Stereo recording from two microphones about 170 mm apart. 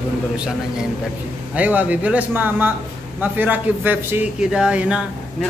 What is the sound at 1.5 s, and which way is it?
Speech, 10° right (ahead or behind).